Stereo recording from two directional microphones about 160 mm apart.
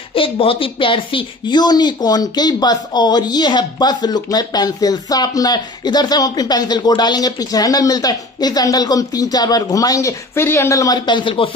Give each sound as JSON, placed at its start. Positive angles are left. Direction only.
{"t": 0.1, "sound": "speech", "side_deg": 35}